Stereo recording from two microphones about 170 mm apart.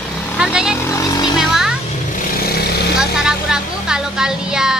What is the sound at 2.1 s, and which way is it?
Vehicle, 50° left (ahead or behind).